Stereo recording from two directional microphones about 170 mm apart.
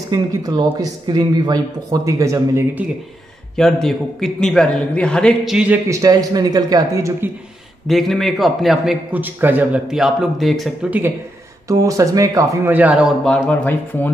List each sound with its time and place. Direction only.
0.1 s speech: 20° right (ahead or behind)
3.5 s a man's voice: centre (ahead or behind)
5.9 s speech: 20° right (ahead or behind)
7.9 s a man's voice: centre (ahead or behind)
10.9 s a man's voice: 10° right (ahead or behind); by 14.1 s 10° left (ahead or behind)